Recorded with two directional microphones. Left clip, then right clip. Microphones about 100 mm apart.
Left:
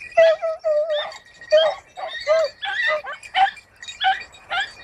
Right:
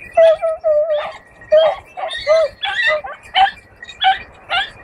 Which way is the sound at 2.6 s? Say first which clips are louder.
Right 5 dB; 40° right (ahead or behind).